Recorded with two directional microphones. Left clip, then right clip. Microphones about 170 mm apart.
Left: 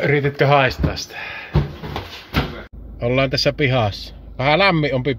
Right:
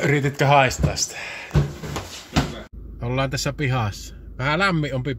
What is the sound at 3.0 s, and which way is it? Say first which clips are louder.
Speech: left 7 dB; 10° left (ahead or behind).